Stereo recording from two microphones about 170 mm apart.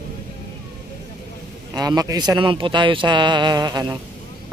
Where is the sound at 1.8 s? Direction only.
20° right (ahead or behind).